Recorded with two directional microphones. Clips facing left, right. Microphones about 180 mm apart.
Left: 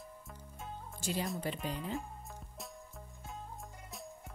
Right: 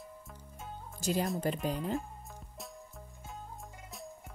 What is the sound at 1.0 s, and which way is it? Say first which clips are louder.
Speech: right 5 dB; 45° right (ahead or behind).